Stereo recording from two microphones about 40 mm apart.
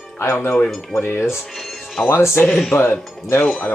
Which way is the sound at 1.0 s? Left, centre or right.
Left.